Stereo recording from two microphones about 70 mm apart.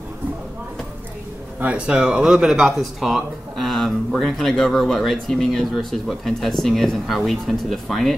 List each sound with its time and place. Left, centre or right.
1.6 s speech: centre